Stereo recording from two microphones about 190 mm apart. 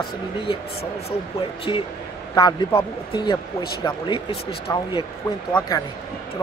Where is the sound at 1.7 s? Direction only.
25° left (ahead or behind).